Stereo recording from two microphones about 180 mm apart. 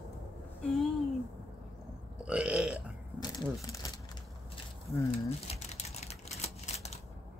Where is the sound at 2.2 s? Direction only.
5° right (ahead or behind).